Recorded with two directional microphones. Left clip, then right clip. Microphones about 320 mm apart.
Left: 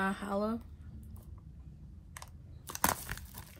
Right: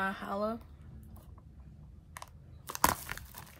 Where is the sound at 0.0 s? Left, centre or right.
Centre.